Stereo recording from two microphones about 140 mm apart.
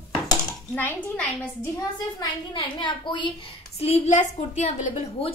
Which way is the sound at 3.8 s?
50° left (ahead or behind).